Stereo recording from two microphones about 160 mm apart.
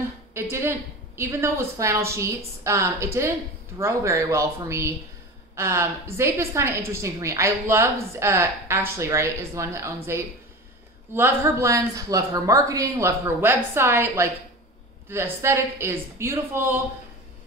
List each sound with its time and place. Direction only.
0.3 s a woman's voice: 15° right (ahead or behind)
11.1 s a woman's voice: 15° right (ahead or behind)